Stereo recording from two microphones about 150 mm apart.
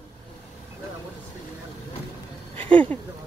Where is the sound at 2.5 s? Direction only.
40° right (ahead or behind).